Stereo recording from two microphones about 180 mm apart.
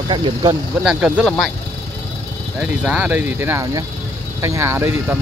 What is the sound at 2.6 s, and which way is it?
Speech, 5° right (ahead or behind).